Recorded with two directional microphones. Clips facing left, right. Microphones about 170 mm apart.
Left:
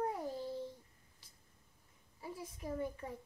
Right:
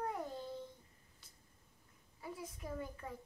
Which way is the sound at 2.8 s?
25° left (ahead or behind).